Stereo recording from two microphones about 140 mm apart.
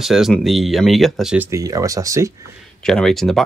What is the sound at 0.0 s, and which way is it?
Speech, centre (ahead or behind).